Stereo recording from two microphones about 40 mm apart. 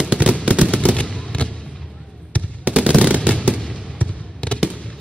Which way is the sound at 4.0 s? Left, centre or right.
Left.